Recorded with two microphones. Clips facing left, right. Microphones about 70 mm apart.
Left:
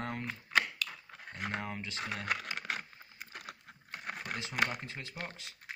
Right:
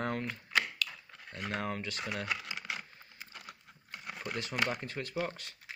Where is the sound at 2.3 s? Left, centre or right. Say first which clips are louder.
Left 2 dB; left.